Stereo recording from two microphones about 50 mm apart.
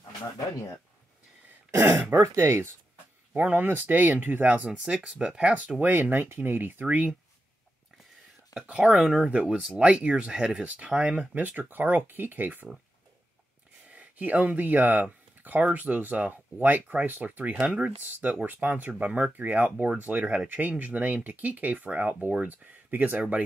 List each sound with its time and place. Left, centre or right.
1.7 s speech: right
2.1 s speech: right
2.4 s speech: right
4.7 s speech: centre; by 7.1 s right
8.6 s speech: right
11.3 s speech: right
13.8 s speech: right
17.6 s speech: right